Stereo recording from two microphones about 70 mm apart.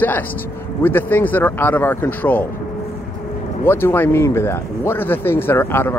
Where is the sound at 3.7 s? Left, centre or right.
Left.